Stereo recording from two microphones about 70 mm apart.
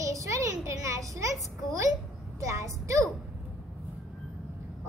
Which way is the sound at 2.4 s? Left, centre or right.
Right.